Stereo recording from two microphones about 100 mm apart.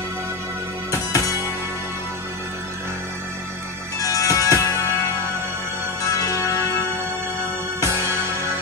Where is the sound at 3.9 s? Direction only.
35° left (ahead or behind).